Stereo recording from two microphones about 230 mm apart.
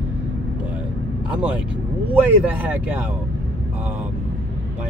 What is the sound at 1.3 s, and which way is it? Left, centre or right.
Speech, centre.